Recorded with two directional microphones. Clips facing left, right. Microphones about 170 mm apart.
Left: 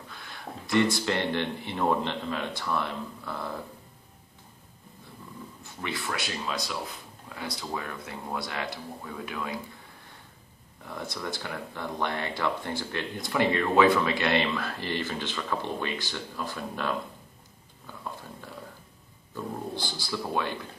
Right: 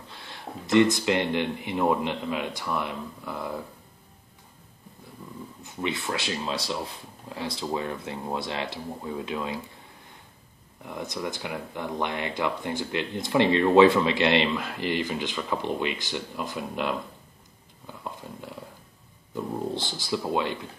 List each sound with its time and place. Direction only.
0.1 s speech: 25° right (ahead or behind)
5.6 s speech: 20° right (ahead or behind)
10.9 s speech: 15° right (ahead or behind)
19.3 s speech: 20° right (ahead or behind)